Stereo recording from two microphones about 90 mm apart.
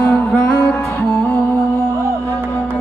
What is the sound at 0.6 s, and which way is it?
Music, 15° left (ahead or behind).